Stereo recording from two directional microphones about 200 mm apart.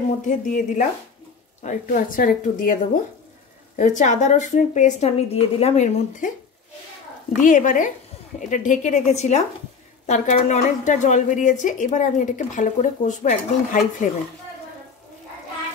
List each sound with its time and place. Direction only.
0.3 s a woman's voice: 40° left (ahead or behind)
7.3 s a woman's voice: 40° left (ahead or behind)